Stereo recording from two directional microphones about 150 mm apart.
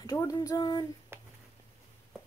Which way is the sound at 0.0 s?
25° left (ahead or behind).